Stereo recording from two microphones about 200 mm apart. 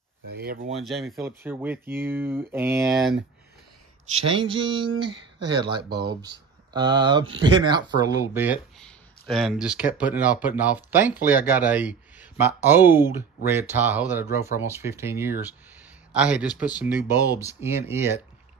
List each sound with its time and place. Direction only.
0.3 s speech: 55° right (ahead or behind)
0.7 s speech: centre (ahead or behind)
4.1 s speech: 25° right (ahead or behind)
6.7 s speech: 20° right (ahead or behind)
8.7 s speech: 5° left (ahead or behind); by 18.2 s 10° right (ahead or behind)